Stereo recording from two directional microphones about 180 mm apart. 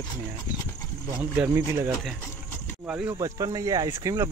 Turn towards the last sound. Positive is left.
turn(degrees=-15)  # may be behind; listen again after turning